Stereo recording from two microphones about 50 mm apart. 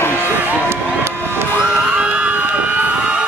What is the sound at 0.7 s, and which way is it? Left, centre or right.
Run, right.